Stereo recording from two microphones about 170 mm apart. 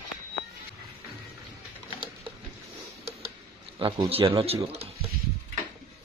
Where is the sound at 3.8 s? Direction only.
30° right (ahead or behind).